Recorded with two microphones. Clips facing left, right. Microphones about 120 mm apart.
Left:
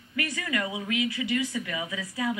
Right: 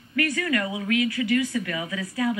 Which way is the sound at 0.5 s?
15° left (ahead or behind).